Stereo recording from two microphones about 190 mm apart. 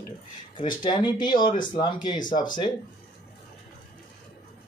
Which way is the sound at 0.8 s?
25° left (ahead or behind).